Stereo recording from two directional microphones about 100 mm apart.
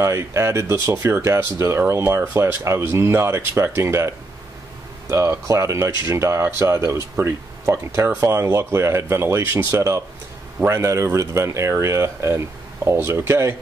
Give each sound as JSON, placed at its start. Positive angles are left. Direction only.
{"t": 0.0, "sound": "speech", "side_deg": -30}
{"t": 5.1, "sound": "speech", "side_deg": -30}